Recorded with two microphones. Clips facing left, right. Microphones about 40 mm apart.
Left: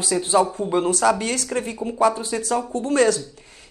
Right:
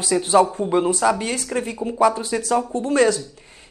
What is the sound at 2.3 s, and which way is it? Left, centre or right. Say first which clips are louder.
Speech: right 2 dB; centre.